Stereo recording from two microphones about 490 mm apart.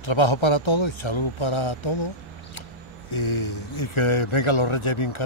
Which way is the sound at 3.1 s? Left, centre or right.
Left.